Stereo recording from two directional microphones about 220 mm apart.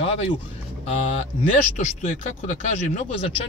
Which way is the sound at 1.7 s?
35° left (ahead or behind).